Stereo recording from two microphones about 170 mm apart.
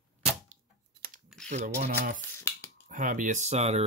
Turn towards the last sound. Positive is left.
turn(degrees=-40)  # may be behind; listen again after turning